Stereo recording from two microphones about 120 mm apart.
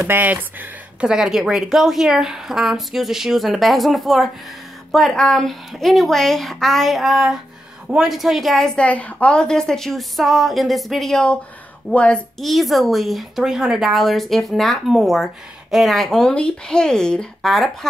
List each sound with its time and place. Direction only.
0.0 s a woman's voice: 15° right (ahead or behind); by 17.6 s centre (ahead or behind)